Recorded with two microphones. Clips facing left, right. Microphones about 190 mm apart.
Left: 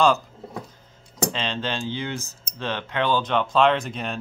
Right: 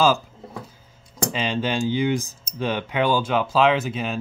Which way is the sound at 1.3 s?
10° right (ahead or behind).